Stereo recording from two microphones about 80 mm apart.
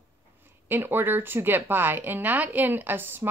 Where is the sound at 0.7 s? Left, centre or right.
Right.